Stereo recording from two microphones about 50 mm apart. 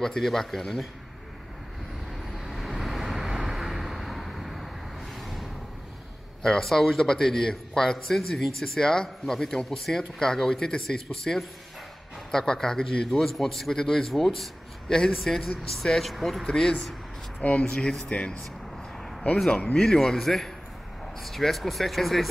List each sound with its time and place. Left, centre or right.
0.0 s a man's voice: centre
2.3 s vehicle: centre
5.2 s a sound: centre
6.4 s a man's voice: centre
16.4 s a man's voice: centre
17.4 s a man's voice: left
19.5 s a man's voice: centre